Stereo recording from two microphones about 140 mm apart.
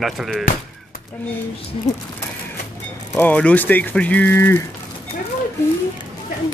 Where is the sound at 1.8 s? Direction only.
45° left (ahead or behind).